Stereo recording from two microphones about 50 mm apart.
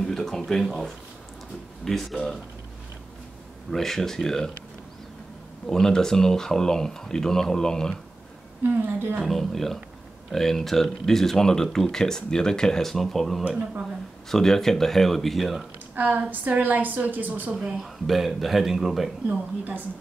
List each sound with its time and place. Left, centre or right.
0.0 s speech: centre
3.7 s speech: centre
5.7 s speech: centre
8.6 s a woman's voice: right
9.2 s speech: centre
16.0 s a woman's voice: right
17.7 s speech: centre